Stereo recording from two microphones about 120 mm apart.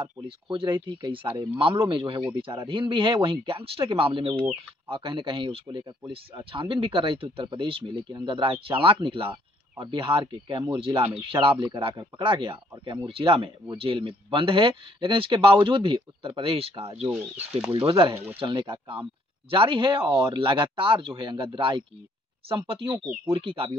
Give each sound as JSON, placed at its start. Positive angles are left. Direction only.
{"t": 0.5, "sound": "speech", "side_deg": -45}
{"t": 17.7, "sound": "speech", "side_deg": -45}